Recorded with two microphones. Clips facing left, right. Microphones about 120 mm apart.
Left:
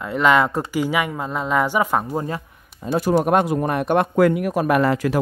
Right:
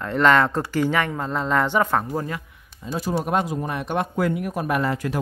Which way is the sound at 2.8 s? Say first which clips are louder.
Left 7 dB; 60° left (ahead or behind).